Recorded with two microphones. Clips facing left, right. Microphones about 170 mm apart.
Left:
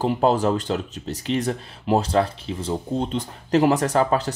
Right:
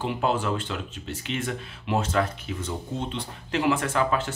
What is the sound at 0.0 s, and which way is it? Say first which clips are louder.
Speech: left 7 dB; 40° left (ahead or behind).